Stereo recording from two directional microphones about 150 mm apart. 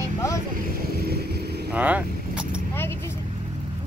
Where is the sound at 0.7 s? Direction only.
90° right.